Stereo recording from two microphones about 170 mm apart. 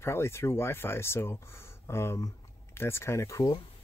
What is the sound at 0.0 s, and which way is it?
Speech, 15° left (ahead or behind).